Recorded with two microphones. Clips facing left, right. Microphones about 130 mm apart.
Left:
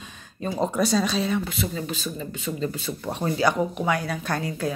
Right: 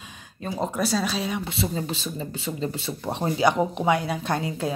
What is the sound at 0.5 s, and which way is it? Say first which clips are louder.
Speech: left 2 dB; 5° right (ahead or behind).